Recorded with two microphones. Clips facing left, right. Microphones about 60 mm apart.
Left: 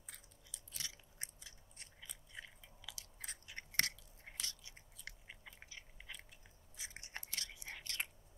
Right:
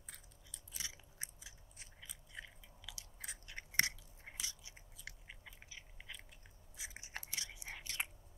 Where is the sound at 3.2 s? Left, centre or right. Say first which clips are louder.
Right 1 dB; centre.